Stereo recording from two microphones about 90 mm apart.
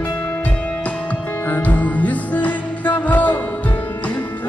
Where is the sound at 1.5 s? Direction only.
15° left (ahead or behind).